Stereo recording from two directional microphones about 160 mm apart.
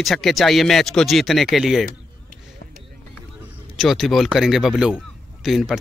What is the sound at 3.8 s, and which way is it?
A man's voice, centre (ahead or behind).